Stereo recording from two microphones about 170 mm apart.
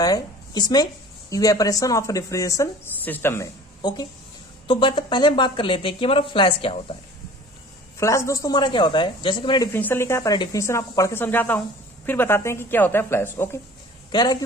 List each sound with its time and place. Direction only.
0.0 s speech: 25° left (ahead or behind)
8.0 s speech: 20° left (ahead or behind)
9.7 s speech: 10° left (ahead or behind)
14.1 s speech: 25° left (ahead or behind)